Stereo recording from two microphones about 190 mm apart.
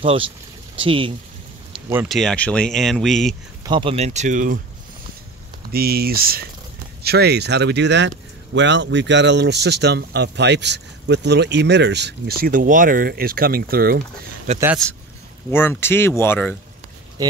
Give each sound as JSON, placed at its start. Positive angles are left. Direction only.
{"t": 0.0, "sound": "speech", "side_deg": -30}
{"t": 2.0, "sound": "speech", "side_deg": 0}
{"t": 3.6, "sound": "speech", "side_deg": -25}
{"t": 5.7, "sound": "speech", "side_deg": -55}
{"t": 14.5, "sound": "speech", "side_deg": -35}
{"t": 15.5, "sound": "speech", "side_deg": 10}